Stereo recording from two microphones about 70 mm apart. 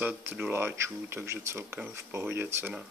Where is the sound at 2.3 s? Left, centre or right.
Right.